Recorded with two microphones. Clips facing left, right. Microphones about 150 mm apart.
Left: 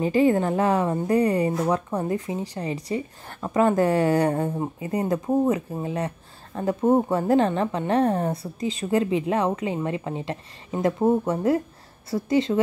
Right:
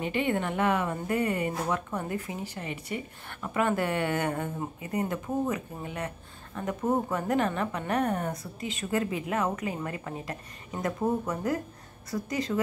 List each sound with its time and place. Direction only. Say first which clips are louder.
0.0 s speech: left 9 dB; 35° left (ahead or behind)